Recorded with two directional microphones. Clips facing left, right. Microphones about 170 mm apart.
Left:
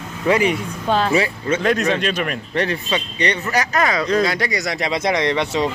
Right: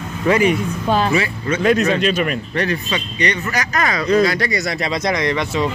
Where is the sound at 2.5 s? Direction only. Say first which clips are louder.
Left 2 dB; 25° left (ahead or behind).